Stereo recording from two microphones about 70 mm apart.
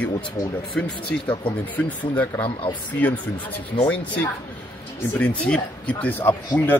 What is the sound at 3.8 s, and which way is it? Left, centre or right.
Speech, left.